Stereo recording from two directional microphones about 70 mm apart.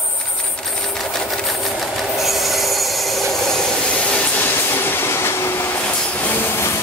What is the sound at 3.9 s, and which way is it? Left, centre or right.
Train, centre.